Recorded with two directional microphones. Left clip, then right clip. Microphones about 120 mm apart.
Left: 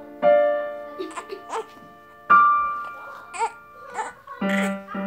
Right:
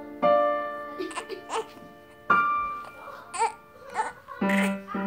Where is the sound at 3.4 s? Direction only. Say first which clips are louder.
Even; 40° left (ahead or behind).